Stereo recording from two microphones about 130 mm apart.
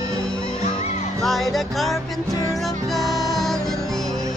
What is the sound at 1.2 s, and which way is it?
Music, centre (ahead or behind).